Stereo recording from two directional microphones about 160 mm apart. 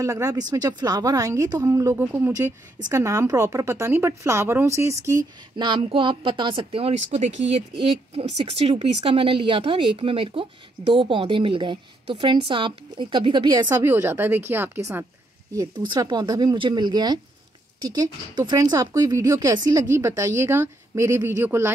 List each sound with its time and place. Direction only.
0.0 s a woman's voice: 20° right (ahead or behind)
13.7 s speech: 15° right (ahead or behind)
15.9 s speech: 25° right (ahead or behind)